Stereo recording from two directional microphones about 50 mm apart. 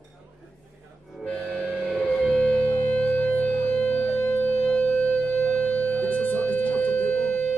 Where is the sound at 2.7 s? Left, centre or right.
Left.